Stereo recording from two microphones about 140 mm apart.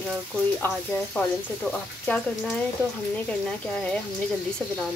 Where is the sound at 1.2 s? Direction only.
15° left (ahead or behind).